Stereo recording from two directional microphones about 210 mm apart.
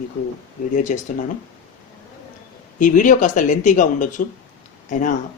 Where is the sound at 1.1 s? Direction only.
40° left (ahead or behind).